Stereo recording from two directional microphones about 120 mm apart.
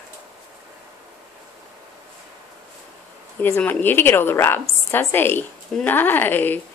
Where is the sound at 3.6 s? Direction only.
15° left (ahead or behind).